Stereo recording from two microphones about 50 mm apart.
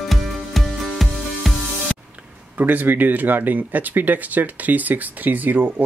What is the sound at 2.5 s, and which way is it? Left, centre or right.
Speech, right.